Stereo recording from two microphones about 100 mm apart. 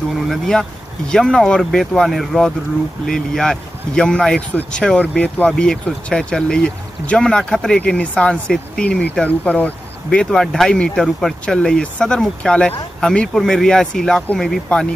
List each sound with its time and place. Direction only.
0.3 s speech: 5° left (ahead or behind)
10.0 s speech: 5° left (ahead or behind)